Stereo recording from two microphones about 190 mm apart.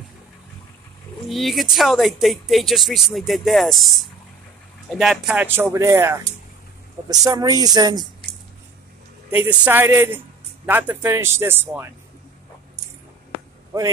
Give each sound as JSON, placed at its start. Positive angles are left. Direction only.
{"t": 1.3, "sound": "speech", "side_deg": 0}
{"t": 9.3, "sound": "speech", "side_deg": -10}